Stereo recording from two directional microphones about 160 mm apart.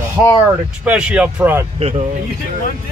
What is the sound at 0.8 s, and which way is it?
Speech, 5° right (ahead or behind).